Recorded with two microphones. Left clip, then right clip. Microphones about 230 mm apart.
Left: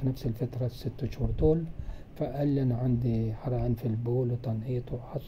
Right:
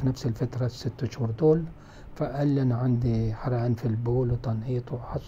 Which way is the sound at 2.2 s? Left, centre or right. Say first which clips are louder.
Right 3 dB; centre.